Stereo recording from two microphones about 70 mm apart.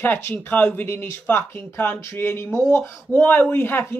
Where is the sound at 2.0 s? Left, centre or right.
Left.